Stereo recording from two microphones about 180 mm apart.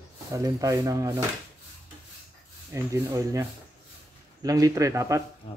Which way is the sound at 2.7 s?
15° right (ahead or behind).